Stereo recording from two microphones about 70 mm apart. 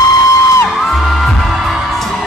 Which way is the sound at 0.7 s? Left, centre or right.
Centre.